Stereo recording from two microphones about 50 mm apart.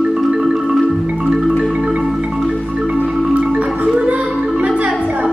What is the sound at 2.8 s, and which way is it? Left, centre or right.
Marimba, right.